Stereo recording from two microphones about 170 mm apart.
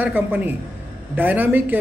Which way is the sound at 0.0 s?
10° right (ahead or behind).